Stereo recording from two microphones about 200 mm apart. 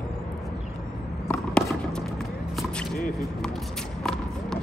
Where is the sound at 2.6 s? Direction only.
Centre (ahead or behind).